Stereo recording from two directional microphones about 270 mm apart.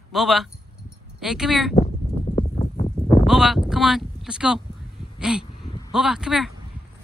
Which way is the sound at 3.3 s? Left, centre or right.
Centre.